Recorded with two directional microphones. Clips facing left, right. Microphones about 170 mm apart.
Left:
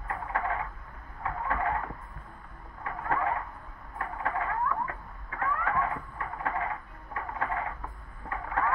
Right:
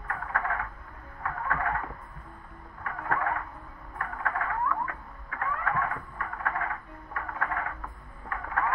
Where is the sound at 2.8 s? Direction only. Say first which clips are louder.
Left 1 dB; 20° left (ahead or behind).